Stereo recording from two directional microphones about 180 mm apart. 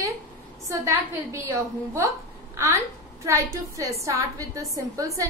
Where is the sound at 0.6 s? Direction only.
15° right (ahead or behind).